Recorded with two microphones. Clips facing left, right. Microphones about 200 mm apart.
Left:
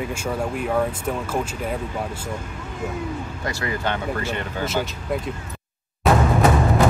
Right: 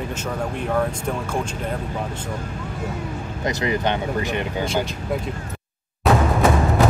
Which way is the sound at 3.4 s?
20° right (ahead or behind).